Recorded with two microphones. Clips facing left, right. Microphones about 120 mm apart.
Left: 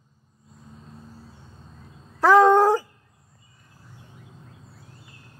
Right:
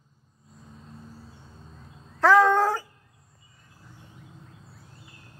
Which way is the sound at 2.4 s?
20° left (ahead or behind).